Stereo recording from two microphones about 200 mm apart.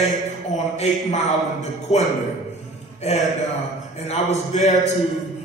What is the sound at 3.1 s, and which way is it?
A man's voice, 35° left (ahead or behind).